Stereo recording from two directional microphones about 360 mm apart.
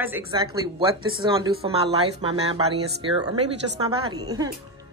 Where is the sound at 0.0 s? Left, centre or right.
Centre.